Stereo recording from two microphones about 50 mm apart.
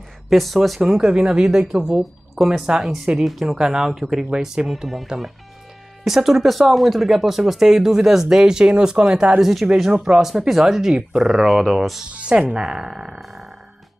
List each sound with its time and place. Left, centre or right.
0.3 s speech: centre
1.0 s speech: centre
3.5 s speech: centre
6.0 s speech: centre
9.4 s speech: centre
9.8 s speech: centre
12.1 s speech: right
13.2 s music: centre